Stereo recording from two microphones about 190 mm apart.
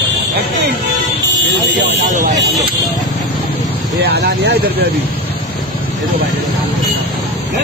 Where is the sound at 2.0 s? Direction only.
40° right (ahead or behind).